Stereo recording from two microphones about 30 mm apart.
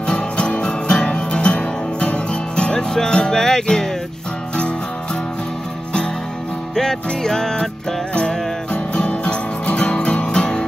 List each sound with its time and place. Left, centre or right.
0.0 s music: left
2.9 s music: centre
6.7 s music: centre
8.7 s music: left